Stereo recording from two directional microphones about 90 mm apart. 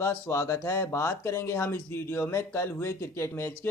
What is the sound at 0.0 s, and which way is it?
Speech, 35° left (ahead or behind).